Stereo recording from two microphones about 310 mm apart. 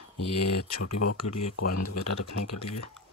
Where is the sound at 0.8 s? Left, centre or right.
Left.